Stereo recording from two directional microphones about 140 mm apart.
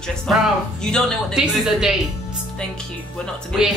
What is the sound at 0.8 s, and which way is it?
A woman's voice, centre (ahead or behind).